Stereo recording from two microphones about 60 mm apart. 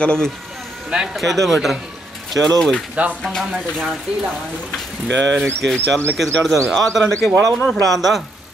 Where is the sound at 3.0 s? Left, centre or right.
Right.